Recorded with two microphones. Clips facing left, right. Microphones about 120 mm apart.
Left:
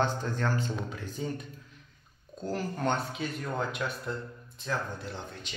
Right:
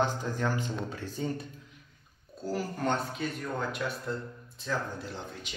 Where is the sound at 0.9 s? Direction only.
30° right (ahead or behind).